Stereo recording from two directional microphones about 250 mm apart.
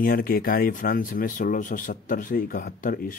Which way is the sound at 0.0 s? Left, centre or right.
Left.